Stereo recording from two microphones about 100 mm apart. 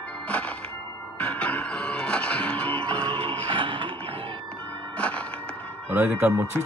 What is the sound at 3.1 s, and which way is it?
Music, 70° right (ahead or behind).